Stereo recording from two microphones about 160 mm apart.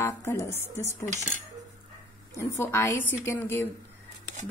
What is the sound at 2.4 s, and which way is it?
Speech, 15° left (ahead or behind).